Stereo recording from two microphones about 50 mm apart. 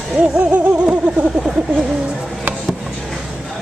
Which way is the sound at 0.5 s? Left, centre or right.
Right.